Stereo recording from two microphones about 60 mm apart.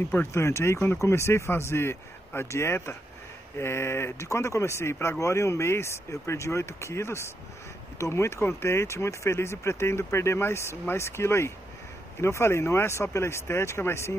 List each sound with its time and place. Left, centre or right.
0.1 s speech: left